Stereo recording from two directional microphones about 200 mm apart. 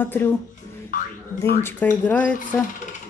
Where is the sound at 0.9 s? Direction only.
40° left (ahead or behind).